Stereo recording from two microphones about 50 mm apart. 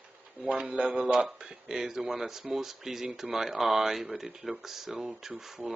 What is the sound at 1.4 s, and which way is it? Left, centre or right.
Speech, centre.